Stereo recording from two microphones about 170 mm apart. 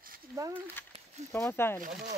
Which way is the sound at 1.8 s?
50° right (ahead or behind).